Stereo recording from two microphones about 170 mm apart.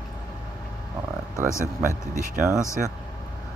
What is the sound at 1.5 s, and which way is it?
Speech, 15° left (ahead or behind).